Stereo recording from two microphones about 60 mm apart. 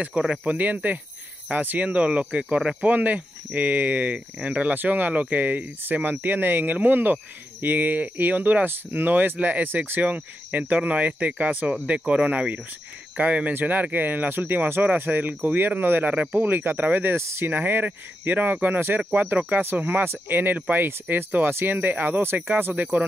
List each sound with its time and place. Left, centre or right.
0.2 s speech: centre; by 22.4 s right
22.8 s speech: right